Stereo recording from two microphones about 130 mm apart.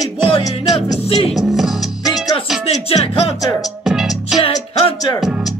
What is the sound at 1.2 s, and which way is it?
Music, centre (ahead or behind).